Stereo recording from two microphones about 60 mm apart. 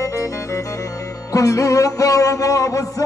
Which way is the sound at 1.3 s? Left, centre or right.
Left.